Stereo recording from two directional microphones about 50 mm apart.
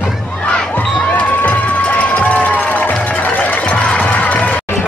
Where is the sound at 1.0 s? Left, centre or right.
Left.